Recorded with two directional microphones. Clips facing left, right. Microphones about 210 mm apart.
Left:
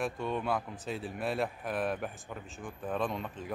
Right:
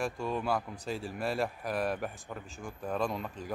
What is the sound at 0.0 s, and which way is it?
Speech, centre (ahead or behind).